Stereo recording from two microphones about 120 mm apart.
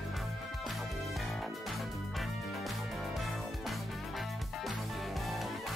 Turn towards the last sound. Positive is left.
turn(degrees=0)  # may be behind; listen again after turning